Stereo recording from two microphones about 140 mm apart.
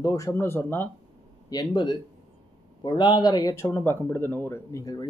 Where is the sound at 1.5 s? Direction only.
30° left (ahead or behind).